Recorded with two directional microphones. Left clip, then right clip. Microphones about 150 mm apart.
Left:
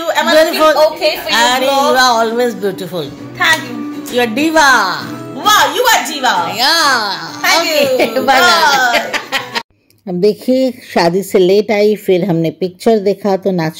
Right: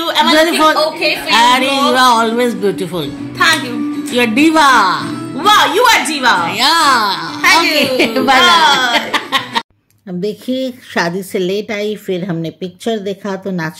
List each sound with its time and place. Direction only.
0.1 s a woman's voice: centre (ahead or behind)
10.2 s a woman's voice: 25° left (ahead or behind)